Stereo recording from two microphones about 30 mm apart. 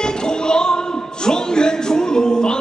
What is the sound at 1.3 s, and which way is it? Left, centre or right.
Music, left.